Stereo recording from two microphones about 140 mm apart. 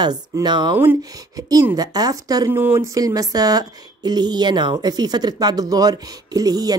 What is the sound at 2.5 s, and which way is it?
Speech, 15° right (ahead or behind).